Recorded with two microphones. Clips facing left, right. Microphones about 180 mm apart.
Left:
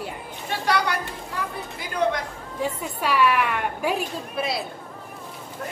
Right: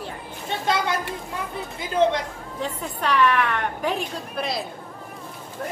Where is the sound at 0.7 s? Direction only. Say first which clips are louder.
Even; 20° right (ahead or behind).